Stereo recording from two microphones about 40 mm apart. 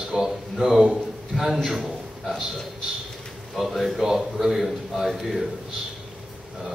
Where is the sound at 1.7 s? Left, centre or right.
Centre.